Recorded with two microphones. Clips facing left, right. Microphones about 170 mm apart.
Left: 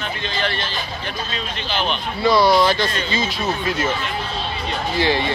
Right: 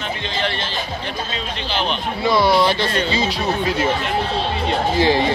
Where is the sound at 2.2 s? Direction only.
20° right (ahead or behind).